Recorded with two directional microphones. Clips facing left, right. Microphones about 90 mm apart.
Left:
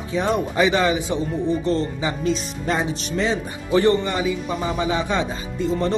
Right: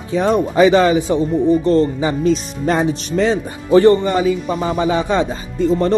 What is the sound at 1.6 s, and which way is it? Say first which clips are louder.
Speech: right 8 dB; 45° right (ahead or behind).